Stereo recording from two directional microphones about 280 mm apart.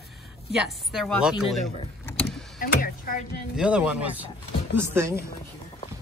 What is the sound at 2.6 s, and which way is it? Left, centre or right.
Speech, left.